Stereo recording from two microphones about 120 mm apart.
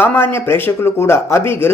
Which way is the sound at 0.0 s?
20° left (ahead or behind).